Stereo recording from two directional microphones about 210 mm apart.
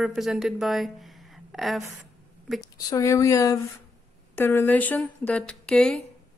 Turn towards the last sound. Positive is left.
turn(degrees=5)  # may be behind; listen again after turning